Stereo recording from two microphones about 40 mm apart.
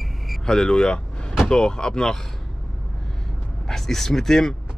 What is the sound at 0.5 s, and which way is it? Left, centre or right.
Speech, centre.